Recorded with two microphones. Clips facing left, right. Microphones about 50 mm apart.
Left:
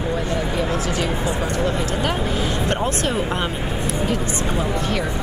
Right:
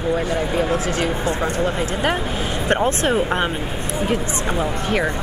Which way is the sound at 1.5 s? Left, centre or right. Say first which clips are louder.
Right 1 dB; right.